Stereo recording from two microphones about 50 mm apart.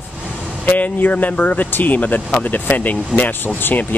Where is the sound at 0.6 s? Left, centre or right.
Left.